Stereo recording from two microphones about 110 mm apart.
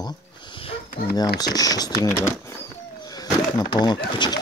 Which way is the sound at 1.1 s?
35° left (ahead or behind).